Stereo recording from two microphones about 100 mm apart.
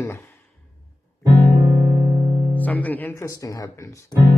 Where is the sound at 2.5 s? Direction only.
15° left (ahead or behind).